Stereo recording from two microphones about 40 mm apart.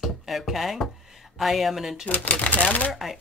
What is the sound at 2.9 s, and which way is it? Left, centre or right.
Speech, centre.